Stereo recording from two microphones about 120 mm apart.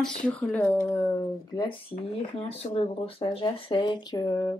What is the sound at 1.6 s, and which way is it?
Speech, 50° left (ahead or behind).